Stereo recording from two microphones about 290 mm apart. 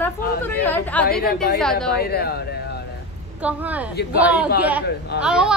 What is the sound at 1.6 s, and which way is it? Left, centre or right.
Speech, centre.